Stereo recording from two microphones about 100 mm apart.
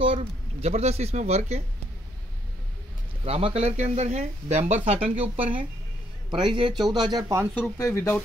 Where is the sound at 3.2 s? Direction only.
80° right.